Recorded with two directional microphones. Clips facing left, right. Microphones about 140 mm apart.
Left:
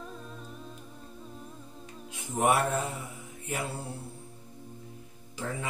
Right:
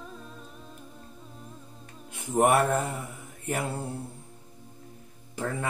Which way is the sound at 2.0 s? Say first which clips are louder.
Right 4 dB; 50° right (ahead or behind).